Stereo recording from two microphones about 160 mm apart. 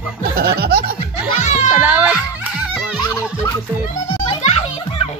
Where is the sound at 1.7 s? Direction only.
10° right (ahead or behind).